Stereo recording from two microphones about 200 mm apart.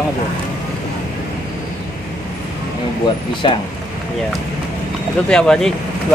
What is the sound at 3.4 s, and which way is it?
Speech, 25° left (ahead or behind).